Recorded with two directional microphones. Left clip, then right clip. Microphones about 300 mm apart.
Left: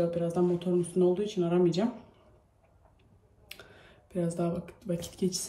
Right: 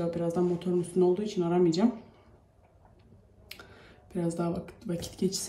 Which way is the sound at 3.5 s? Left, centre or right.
Centre.